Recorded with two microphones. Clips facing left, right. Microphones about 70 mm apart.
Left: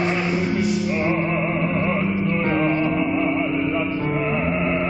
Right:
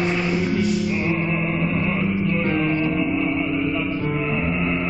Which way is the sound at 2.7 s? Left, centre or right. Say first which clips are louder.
Left 1 dB; centre.